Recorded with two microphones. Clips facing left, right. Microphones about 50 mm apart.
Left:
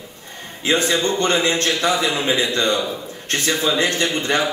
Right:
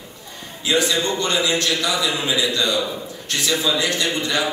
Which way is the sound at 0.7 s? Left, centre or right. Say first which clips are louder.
Left 1 dB; left.